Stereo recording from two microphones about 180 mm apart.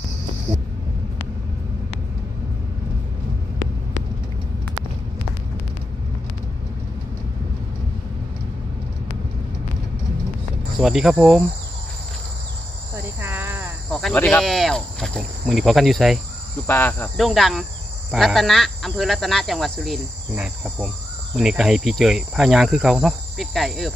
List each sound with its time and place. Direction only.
10.8 s speech: centre (ahead or behind)
12.9 s cricket: 10° right (ahead or behind)
14.1 s speech: 5° left (ahead or behind)
16.6 s speech: 10° left (ahead or behind)
17.2 s speech: centre (ahead or behind)